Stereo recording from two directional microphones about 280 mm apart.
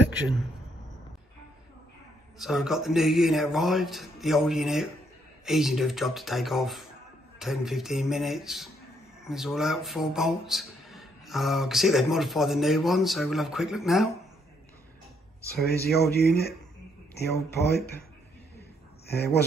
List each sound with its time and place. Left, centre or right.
2.3 s speech: centre
15.4 s speech: left
19.0 s speech: left